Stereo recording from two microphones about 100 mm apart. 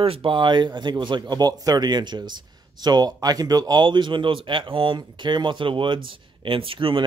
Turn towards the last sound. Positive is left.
turn(degrees=-60)  # may be behind; listen again after turning